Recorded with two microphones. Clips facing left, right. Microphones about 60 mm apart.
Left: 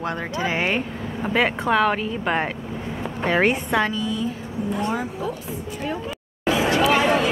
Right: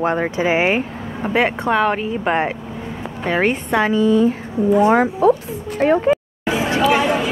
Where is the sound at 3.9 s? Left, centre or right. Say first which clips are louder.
Right 11 dB; right.